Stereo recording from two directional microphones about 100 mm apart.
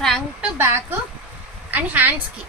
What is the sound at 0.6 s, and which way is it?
Speech, 25° right (ahead or behind).